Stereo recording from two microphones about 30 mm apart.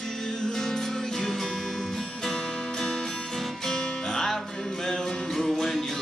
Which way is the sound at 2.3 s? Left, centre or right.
Left.